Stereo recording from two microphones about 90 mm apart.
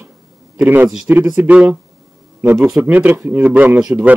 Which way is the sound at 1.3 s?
20° right (ahead or behind).